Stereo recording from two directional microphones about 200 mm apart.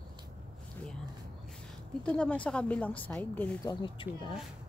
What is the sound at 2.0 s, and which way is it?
Speech, 5° left (ahead or behind).